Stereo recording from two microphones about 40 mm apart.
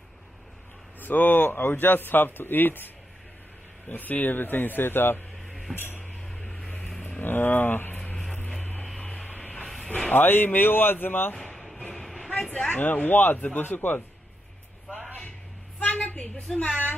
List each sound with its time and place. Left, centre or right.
1.0 s a man's voice: left
3.9 s a man's voice: left
5.5 s a sound: centre
7.0 s vehicle: left
7.2 s a man's voice: left
10.1 s a man's voice: left
11.3 s a sound: centre
11.9 s vehicle: centre
12.4 s speech: left
12.7 s speech: left
15.8 s vehicle: left
16.2 s a woman's voice: left